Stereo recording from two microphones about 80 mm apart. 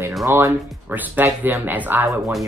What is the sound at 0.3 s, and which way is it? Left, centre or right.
Speech, right.